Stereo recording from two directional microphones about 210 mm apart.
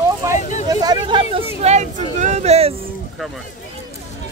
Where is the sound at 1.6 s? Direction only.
35° right (ahead or behind).